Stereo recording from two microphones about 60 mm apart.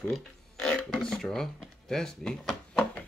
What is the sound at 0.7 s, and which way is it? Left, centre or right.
Speech, centre.